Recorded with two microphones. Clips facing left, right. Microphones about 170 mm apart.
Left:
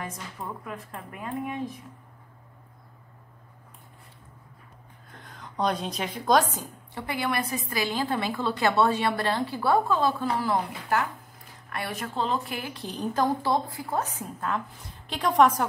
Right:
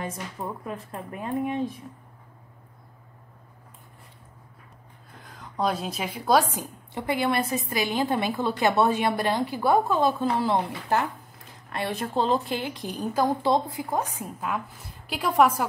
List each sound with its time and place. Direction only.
0.0 s speech: 25° right (ahead or behind)
5.1 s a woman's voice: centre (ahead or behind); by 12.7 s 25° right (ahead or behind)
12.7 s a woman's voice: 10° right (ahead or behind)
13.4 s a woman's voice: 20° right (ahead or behind)